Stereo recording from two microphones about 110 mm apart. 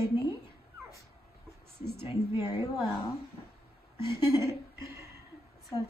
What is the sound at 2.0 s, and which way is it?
Speech, 60° left (ahead or behind).